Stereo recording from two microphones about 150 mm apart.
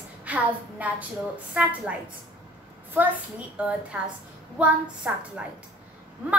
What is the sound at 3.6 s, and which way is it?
A woman's voice, 10° right (ahead or behind).